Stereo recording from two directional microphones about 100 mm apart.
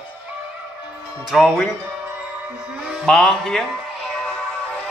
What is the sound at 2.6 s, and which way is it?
Music, 10° right (ahead or behind).